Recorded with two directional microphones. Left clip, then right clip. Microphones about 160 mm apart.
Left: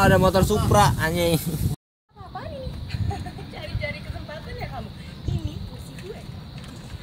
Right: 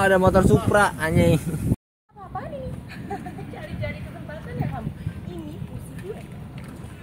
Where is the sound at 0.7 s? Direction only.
30° left (ahead or behind).